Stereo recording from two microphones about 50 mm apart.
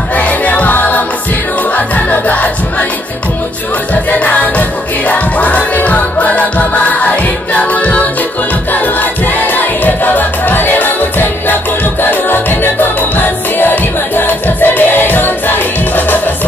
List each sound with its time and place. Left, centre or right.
0.1 s music: left
3.9 s music: left
8.8 s music: left
13.6 s music: left